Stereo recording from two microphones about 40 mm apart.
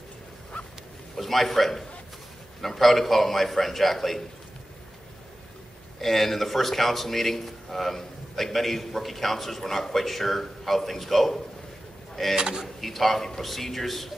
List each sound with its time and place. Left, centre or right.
1.1 s a man's voice: centre
5.9 s a man's voice: centre
12.4 s speech: centre
12.6 s a man's voice: centre